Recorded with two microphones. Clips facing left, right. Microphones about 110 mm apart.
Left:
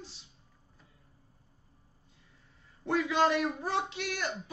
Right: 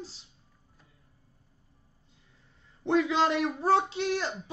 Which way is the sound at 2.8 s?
25° right (ahead or behind).